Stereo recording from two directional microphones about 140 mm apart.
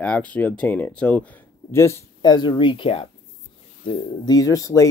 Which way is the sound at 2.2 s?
30° left (ahead or behind).